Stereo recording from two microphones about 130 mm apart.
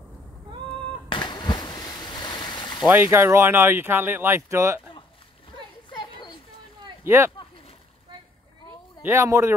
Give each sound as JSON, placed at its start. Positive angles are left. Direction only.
{"t": 1.0, "sound": "a sound", "side_deg": 35}
{"t": 2.9, "sound": "speech", "side_deg": -15}
{"t": 5.9, "sound": "children playing", "side_deg": 35}
{"t": 7.1, "sound": "speech", "side_deg": -20}
{"t": 9.0, "sound": "speech", "side_deg": -20}